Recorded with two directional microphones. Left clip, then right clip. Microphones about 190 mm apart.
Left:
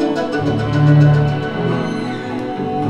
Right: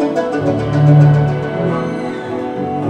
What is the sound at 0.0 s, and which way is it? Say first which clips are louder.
Music: right 2 dB; 50° left (ahead or behind).